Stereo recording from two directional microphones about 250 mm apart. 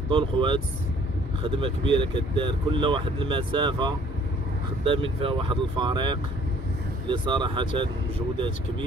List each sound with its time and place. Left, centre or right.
0.1 s speech: centre